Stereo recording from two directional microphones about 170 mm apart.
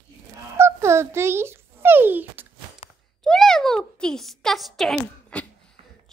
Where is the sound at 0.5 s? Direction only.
15° right (ahead or behind).